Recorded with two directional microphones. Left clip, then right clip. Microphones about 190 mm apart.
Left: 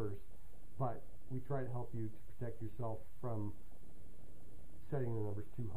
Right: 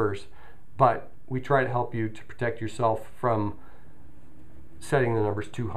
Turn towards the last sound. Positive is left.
turn(degrees=-20)  # may be behind; listen again after turning